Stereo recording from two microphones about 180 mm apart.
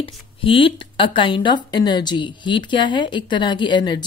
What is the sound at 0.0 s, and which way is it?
Speech, 30° left (ahead or behind).